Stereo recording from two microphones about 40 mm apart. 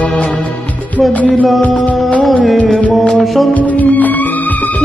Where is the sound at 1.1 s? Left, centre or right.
Left.